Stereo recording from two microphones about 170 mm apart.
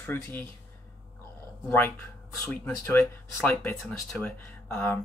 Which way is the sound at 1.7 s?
10° left (ahead or behind).